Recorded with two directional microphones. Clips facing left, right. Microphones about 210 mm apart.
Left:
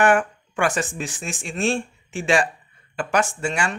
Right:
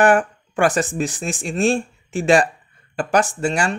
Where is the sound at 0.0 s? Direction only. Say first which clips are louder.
Right 3 dB; 35° right (ahead or behind).